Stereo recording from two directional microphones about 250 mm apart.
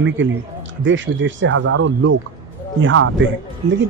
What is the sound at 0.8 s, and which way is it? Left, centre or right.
Speech, right.